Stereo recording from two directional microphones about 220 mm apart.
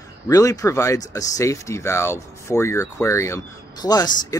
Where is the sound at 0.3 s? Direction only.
15° left (ahead or behind).